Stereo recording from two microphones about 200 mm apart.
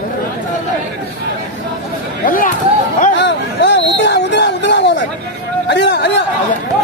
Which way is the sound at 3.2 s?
60° left (ahead or behind).